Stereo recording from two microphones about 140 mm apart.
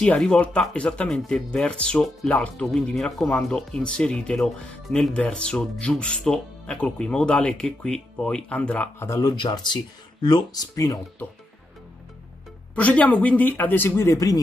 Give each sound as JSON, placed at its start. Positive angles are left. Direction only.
{"t": 0.0, "sound": "speech", "side_deg": 5}
{"t": 12.7, "sound": "speech", "side_deg": 10}